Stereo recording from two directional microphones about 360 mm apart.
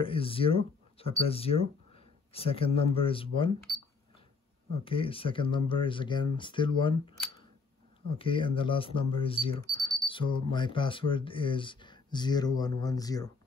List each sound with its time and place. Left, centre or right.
0.0 s speech: centre
4.8 s speech: centre